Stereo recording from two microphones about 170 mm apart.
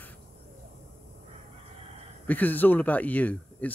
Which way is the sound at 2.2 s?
10° left (ahead or behind).